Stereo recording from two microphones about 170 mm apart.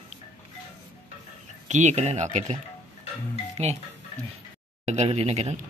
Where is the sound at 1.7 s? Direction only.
45° right (ahead or behind).